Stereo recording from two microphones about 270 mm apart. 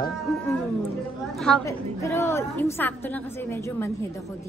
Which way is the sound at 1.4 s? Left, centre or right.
Centre.